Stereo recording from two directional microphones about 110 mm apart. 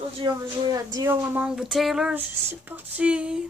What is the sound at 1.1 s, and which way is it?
Speech, 20° right (ahead or behind).